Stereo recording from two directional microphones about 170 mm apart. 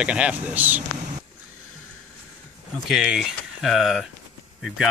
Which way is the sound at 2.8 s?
5° right (ahead or behind).